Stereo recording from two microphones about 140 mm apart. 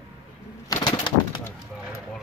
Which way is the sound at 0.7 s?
30° left (ahead or behind).